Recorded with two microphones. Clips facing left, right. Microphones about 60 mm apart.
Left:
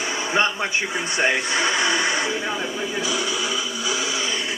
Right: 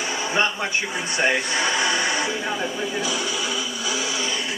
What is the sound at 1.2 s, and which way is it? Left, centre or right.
Speech, left.